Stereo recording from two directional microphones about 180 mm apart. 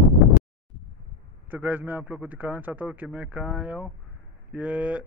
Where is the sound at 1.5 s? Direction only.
10° right (ahead or behind).